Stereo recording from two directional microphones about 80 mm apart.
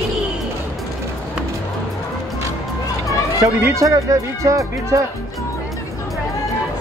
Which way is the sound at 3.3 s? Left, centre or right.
Right.